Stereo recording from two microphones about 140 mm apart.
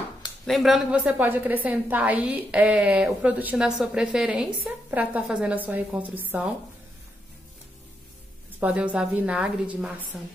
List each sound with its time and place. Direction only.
0.5 s a woman's voice: centre (ahead or behind)
8.5 s a woman's voice: 10° right (ahead or behind)